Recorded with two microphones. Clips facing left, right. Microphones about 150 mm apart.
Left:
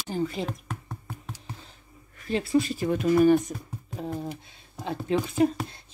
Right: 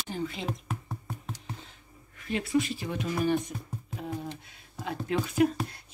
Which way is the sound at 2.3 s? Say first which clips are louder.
Left 3 dB; 30° left (ahead or behind).